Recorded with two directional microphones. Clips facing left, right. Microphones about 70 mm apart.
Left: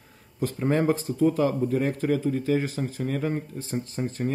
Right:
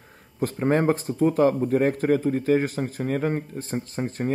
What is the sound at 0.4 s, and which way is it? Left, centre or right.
Speech, right.